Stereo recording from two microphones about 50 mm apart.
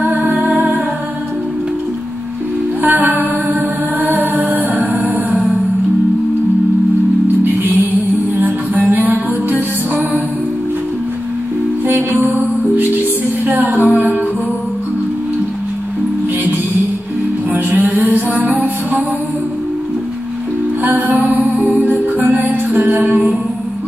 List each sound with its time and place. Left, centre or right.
0.0 s music: right
0.5 s humming: right
2.8 s music: right
5.3 s music: centre
7.4 s music: right
11.9 s music: right
13.5 s female singing: right
17.6 s music: right
20.8 s music: right
22.8 s music: right